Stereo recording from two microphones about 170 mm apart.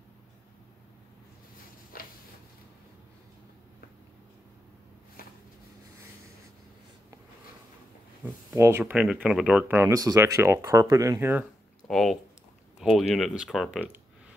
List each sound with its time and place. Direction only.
1.9 s a sound: 55° left (ahead or behind)
8.5 s speech: 15° right (ahead or behind)
9.8 s speech: 20° right (ahead or behind)
11.9 s speech: centre (ahead or behind)